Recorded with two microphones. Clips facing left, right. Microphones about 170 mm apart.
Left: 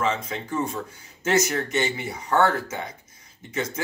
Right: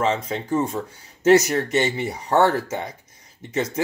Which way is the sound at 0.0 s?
25° right (ahead or behind).